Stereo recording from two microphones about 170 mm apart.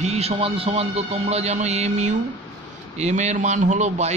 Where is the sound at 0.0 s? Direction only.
40° right (ahead or behind).